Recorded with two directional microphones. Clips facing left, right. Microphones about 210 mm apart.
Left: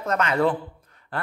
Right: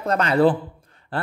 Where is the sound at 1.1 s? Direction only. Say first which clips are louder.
Right 3 dB; 30° right (ahead or behind).